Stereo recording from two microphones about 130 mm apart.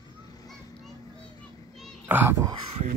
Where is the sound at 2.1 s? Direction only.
15° right (ahead or behind).